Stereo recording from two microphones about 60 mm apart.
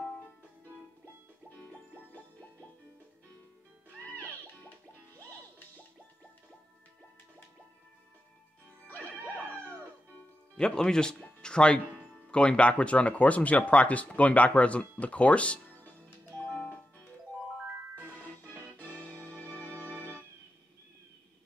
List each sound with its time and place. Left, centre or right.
1.6 s music: left
4.0 s music: left
8.8 s music: left
10.5 s speech: centre
16.3 s music: left
18.1 s music: left
20.0 s organ: left